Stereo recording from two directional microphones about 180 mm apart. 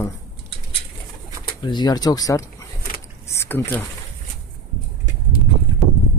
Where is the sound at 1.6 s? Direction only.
25° left (ahead or behind).